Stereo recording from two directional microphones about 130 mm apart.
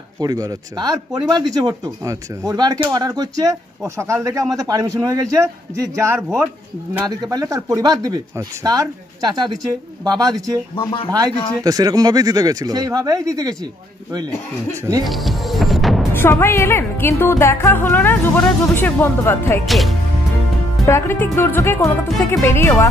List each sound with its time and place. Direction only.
0.2 s speech: 30° right (ahead or behind)
7.1 s speech: 30° right (ahead or behind)
10.8 s speech: 35° left (ahead or behind)
11.1 s speech: 30° right (ahead or behind)
15.0 s music: centre (ahead or behind)
16.1 s speech: 20° left (ahead or behind)
19.6 s speech: centre (ahead or behind)
20.8 s speech: 20° left (ahead or behind)